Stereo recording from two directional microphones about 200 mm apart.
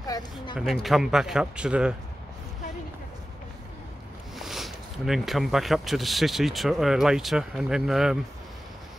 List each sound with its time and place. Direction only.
0.0 s speech: 20° left (ahead or behind)
0.8 s speech: centre (ahead or behind)
4.4 s speech: centre (ahead or behind)